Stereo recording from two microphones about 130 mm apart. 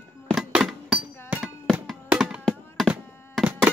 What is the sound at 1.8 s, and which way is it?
Thunk, centre (ahead or behind).